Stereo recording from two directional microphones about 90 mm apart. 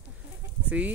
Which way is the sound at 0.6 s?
15° right (ahead or behind).